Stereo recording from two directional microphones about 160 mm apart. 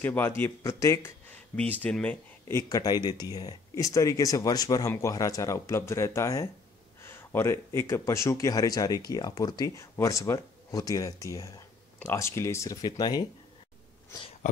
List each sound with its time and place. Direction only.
0.0 s speech: 15° left (ahead or behind)
14.4 s speech: 50° left (ahead or behind)